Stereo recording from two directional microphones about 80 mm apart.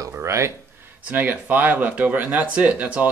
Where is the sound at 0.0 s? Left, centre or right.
Right.